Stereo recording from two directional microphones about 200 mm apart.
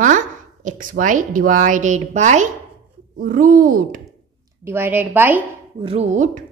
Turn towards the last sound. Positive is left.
turn(degrees=-35)  # may be behind; listen again after turning